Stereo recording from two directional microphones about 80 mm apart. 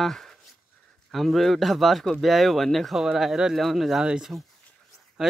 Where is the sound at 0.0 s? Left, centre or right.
Centre.